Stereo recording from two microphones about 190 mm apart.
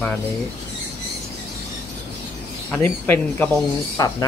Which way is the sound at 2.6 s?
10° left (ahead or behind).